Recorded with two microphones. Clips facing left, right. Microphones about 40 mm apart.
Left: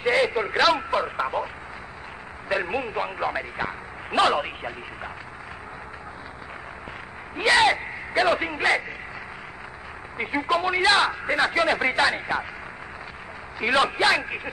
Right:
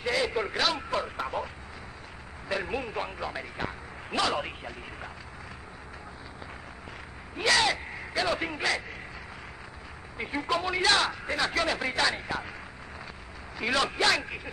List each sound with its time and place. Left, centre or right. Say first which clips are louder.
0.0 s a sound: left 6 dB; left
0.8 s radio: left 6 dB; left
2.4 s a sound: left 5 dB; left
7.3 s speech: left 6 dB; left
10.1 s a man's voice: left 5 dB; left
13.6 s a man's voice: left 6 dB; left